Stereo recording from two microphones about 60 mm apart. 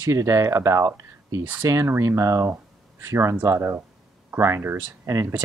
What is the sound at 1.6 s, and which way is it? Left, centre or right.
Speech, right.